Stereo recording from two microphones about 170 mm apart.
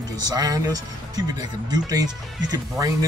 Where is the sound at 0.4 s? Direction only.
20° right (ahead or behind).